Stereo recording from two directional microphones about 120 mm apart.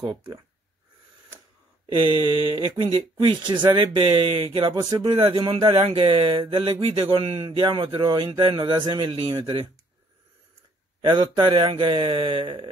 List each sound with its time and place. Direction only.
1.9 s speech: 45° right (ahead or behind)
4.0 s speech: 50° right (ahead or behind)
4.5 s speech: 40° right (ahead or behind)
11.0 s speech: 40° right (ahead or behind)